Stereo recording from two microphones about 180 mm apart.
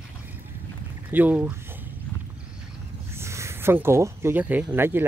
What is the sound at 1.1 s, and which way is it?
Speech, 10° right (ahead or behind).